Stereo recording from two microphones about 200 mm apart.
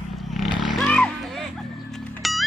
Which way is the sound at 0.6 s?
Centre (ahead or behind).